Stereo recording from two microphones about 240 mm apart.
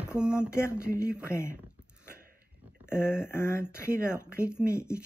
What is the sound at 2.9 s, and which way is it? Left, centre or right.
Speech, centre.